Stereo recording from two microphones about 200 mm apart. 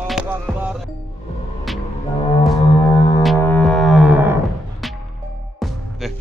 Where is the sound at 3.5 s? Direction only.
5° left (ahead or behind).